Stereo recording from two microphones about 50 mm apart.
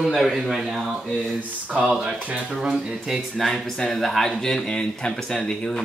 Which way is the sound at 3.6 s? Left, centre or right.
Centre.